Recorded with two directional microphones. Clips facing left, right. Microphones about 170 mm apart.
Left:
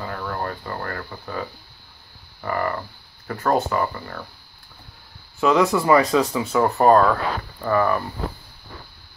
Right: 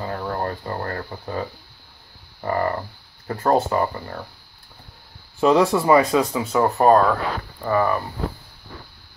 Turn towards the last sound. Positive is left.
turn(degrees=-10)  # may be behind; listen again after turning